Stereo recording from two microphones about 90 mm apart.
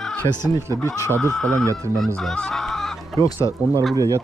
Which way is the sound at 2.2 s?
10° left (ahead or behind).